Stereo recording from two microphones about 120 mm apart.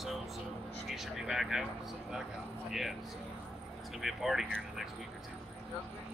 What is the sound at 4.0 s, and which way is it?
Speech, centre (ahead or behind).